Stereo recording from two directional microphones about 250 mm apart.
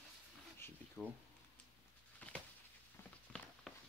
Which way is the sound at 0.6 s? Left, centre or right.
Centre.